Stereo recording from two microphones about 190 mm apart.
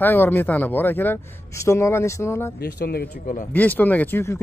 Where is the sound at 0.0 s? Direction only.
10° left (ahead or behind).